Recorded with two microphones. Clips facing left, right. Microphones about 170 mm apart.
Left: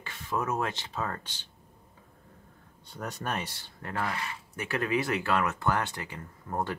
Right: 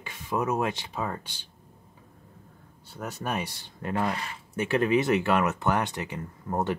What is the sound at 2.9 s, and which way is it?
Speech, 5° right (ahead or behind).